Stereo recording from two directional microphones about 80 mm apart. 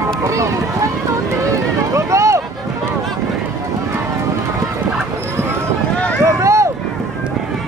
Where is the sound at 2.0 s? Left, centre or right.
Right.